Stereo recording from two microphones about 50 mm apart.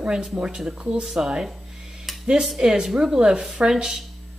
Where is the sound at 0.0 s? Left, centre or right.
Centre.